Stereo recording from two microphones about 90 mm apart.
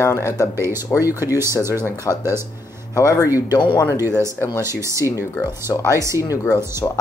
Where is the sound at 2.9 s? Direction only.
40° left (ahead or behind).